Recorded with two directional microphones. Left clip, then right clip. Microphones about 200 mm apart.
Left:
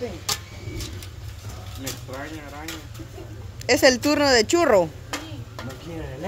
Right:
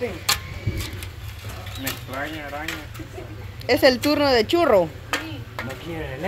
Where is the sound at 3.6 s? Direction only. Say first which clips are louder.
Even; 15° left (ahead or behind).